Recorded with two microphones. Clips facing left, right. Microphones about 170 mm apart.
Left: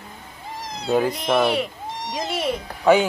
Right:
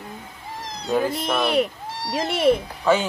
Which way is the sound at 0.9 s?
15° left (ahead or behind).